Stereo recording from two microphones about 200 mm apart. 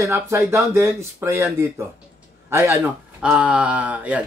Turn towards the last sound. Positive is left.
turn(degrees=-5)  # may be behind; listen again after turning